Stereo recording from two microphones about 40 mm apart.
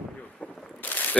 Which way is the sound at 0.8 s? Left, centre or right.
Left.